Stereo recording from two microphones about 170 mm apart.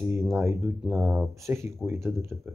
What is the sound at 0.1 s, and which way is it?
Speech, 15° right (ahead or behind).